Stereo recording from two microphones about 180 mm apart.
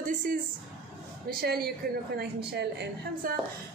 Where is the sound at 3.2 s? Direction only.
50° right (ahead or behind).